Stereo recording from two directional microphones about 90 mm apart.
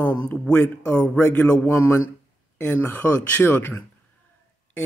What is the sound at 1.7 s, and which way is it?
A man's voice, 30° left (ahead or behind).